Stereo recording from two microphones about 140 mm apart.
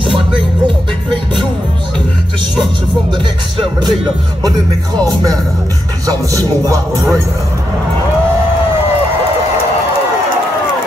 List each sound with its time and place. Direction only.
3.1 s music: 35° right (ahead or behind)
5.0 s speech: 25° right (ahead or behind)